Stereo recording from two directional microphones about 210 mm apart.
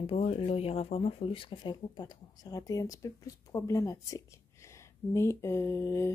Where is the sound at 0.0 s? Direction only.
25° left (ahead or behind).